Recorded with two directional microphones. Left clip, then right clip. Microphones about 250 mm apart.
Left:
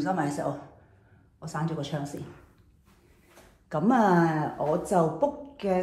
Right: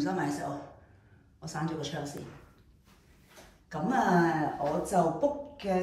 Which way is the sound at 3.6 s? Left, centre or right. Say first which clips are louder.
Left 5 dB; left.